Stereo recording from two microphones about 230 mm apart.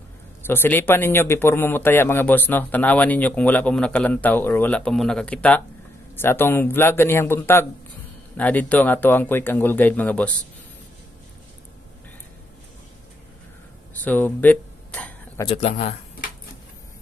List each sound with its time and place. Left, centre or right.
0.5 s a man's voice: centre
14.0 s a sound: centre
15.4 s speech: left